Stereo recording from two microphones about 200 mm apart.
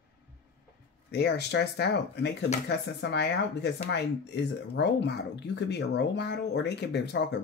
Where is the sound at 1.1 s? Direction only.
55° left (ahead or behind).